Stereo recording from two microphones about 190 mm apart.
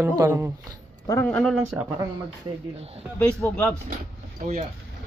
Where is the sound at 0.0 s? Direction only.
15° right (ahead or behind).